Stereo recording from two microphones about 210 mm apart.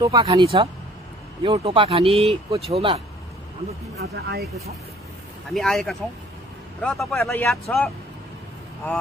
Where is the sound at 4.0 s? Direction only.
50° right (ahead or behind).